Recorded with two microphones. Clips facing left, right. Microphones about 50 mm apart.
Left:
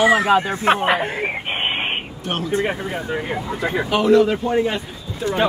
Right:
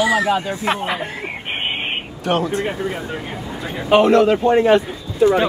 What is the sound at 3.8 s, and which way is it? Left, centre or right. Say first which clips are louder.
Speech: right 3 dB; right.